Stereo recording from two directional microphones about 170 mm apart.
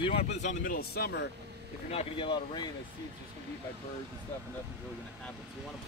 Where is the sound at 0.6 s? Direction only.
60° left (ahead or behind).